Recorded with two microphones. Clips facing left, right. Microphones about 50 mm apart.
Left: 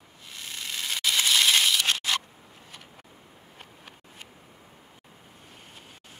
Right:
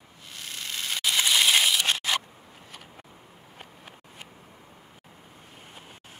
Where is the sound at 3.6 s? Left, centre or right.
Centre.